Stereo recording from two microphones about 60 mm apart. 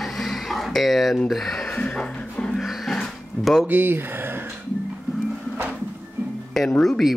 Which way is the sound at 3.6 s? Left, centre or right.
Right.